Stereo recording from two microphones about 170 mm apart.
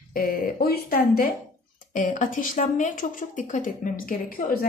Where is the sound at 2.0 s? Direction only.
50° left (ahead or behind).